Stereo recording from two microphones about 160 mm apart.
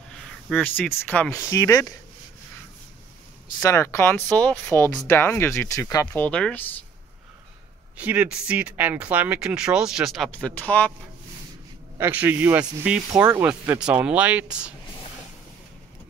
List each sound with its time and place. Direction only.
0.1 s speech: 5° left (ahead or behind); by 2.0 s 20° left (ahead or behind)
3.5 s speech: 20° left (ahead or behind)
6.2 s speech: 5° left (ahead or behind)
8.0 s speech: 10° right (ahead or behind); by 10.9 s 10° left (ahead or behind)
12.0 s speech: 10° right (ahead or behind)